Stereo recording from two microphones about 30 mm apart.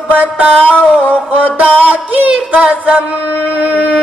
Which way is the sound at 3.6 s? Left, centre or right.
Right.